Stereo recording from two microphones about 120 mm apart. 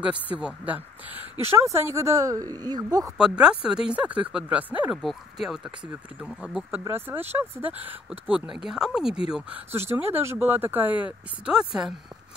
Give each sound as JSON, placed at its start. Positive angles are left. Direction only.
{"t": 0.0, "sound": "speech", "side_deg": -10}
{"t": 3.2, "sound": "speech", "side_deg": -5}